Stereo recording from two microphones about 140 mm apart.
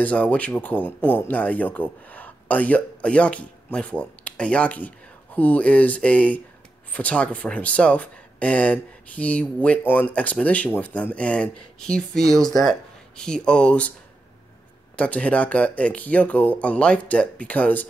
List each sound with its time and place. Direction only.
0.0 s speech: 10° left (ahead or behind)
15.0 s speech: 10° left (ahead or behind)